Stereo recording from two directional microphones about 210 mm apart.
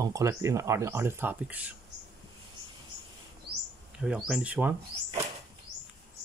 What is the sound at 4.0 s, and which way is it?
Speech, 5° right (ahead or behind).